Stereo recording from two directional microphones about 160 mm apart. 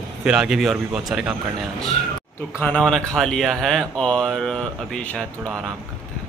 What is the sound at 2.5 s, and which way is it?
A man's voice, 5° left (ahead or behind).